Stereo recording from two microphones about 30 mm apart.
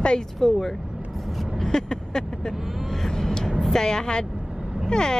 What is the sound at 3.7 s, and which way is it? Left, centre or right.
A woman's voice, left.